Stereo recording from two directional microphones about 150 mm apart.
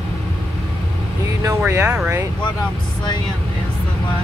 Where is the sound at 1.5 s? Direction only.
15° right (ahead or behind).